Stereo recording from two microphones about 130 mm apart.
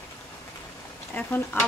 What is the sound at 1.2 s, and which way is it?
Speech, 15° left (ahead or behind).